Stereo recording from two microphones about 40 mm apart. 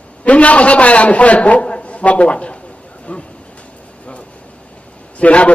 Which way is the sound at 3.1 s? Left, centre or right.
Left.